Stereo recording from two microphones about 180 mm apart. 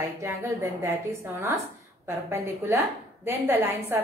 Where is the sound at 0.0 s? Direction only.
15° right (ahead or behind).